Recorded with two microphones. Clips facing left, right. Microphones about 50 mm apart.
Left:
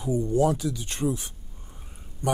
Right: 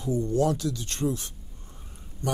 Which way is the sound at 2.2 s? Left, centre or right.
Centre.